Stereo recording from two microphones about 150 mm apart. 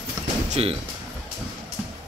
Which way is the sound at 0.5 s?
40° right (ahead or behind).